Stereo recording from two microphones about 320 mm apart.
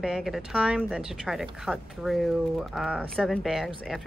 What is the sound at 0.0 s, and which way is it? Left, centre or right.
Speech, centre.